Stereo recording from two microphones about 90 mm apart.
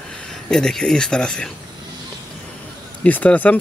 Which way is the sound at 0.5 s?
5° left (ahead or behind).